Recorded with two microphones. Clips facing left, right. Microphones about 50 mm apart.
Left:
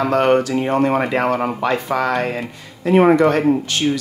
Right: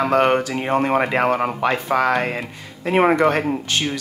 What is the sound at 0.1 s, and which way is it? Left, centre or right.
Speech, centre.